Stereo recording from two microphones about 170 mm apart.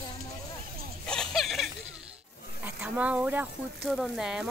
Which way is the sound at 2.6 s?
10° right (ahead or behind).